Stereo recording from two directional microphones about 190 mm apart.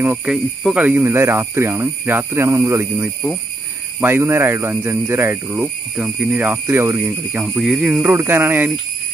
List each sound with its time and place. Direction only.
0.0 s speech: 10° right (ahead or behind)